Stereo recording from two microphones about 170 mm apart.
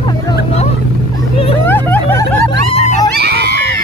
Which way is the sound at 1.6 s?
10° left (ahead or behind).